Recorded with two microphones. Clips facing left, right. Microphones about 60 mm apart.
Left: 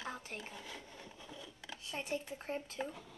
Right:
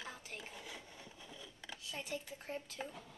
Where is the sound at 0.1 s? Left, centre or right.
Left.